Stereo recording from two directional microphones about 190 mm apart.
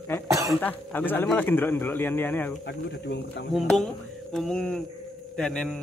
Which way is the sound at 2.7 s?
65° left (ahead or behind).